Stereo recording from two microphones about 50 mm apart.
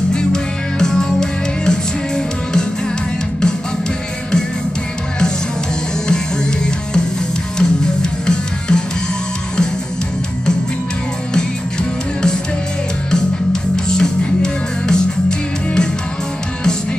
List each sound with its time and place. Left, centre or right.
0.1 s music: centre
6.0 s music: centre
13.1 s music: centre